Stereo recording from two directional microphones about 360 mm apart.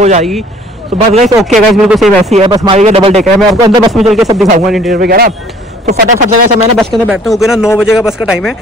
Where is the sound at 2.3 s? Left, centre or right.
Centre.